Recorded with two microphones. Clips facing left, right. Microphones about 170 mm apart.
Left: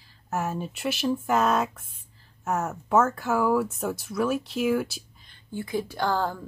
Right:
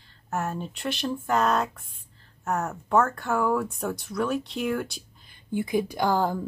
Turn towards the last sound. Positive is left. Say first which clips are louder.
# right 2 dB
turn(degrees=-15)  # may be behind; listen again after turning